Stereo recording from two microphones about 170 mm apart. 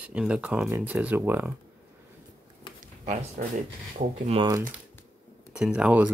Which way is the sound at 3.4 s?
55° right (ahead or behind).